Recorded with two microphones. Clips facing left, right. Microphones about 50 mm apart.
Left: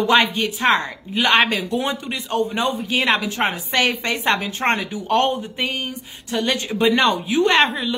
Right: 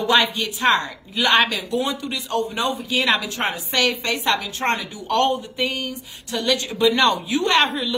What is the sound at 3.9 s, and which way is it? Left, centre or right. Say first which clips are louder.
A woman's voice: left 1 dB; left.